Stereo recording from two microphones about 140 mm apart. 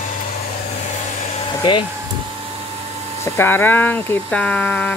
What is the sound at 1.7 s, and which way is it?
Speech, 35° left (ahead or behind).